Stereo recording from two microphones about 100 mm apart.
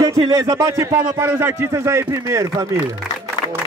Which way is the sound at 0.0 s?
35° right (ahead or behind).